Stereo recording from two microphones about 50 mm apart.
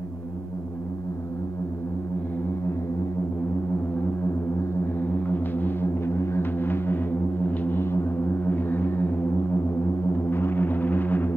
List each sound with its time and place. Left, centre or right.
4.6 s music: left